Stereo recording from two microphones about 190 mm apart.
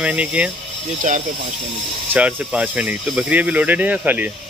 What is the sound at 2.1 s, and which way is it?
Speech, 5° right (ahead or behind).